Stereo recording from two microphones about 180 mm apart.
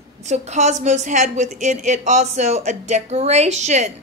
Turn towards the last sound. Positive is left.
turn(degrees=-40)  # may be behind; listen again after turning